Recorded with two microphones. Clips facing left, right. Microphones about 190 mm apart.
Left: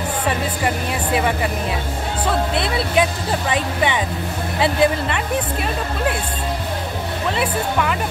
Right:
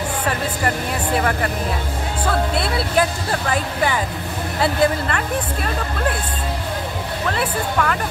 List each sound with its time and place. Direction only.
1.1 s speech: 5° left (ahead or behind)
7.2 s speech: 5° left (ahead or behind)